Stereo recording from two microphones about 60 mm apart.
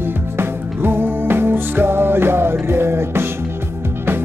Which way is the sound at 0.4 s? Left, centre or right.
Right.